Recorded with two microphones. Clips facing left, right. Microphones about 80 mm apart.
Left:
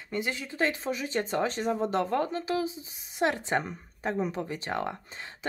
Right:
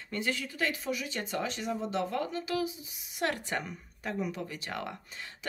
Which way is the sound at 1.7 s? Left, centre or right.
Left.